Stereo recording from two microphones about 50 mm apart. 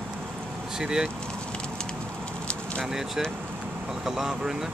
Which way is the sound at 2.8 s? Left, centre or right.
Centre.